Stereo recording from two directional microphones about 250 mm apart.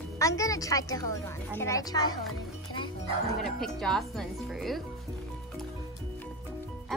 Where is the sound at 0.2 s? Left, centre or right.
Centre.